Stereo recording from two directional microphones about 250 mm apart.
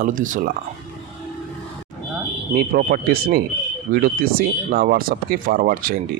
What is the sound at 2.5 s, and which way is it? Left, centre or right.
Speech, right.